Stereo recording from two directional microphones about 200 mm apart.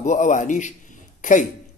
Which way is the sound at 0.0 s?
40° left (ahead or behind).